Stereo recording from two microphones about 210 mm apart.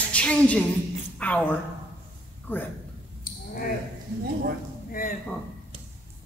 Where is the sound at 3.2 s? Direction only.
45° left (ahead or behind).